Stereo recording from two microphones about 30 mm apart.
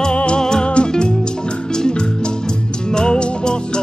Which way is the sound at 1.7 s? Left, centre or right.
Left.